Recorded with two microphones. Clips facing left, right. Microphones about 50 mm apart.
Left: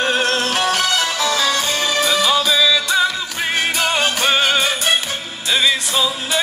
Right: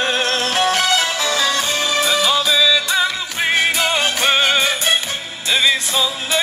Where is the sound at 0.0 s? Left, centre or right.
Left.